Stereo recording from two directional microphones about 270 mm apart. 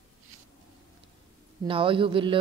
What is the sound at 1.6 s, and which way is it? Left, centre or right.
Speech, centre.